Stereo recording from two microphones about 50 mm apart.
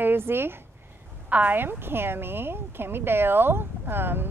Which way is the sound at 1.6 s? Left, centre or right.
Right.